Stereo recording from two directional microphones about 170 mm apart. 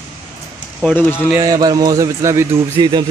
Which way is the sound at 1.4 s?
20° right (ahead or behind).